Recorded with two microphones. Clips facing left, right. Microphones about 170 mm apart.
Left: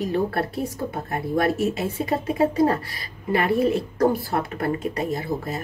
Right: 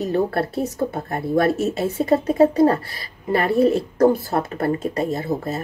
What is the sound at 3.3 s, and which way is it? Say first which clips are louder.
A woman's voice: right 3 dB; 35° right (ahead or behind).